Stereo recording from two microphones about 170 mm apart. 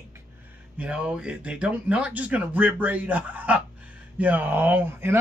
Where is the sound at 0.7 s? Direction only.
5° right (ahead or behind).